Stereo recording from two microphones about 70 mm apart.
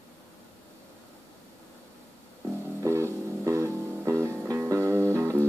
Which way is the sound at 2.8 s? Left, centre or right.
Right.